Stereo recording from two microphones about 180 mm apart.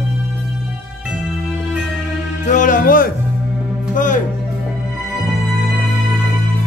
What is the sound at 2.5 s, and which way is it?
Music, 45° left (ahead or behind).